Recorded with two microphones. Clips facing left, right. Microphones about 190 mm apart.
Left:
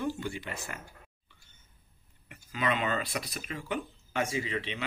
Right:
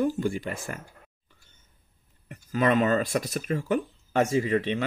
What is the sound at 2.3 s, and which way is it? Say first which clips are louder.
Speech: right 8 dB; 45° right (ahead or behind).